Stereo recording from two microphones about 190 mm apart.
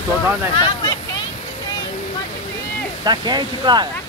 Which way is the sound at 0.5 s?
25° left (ahead or behind).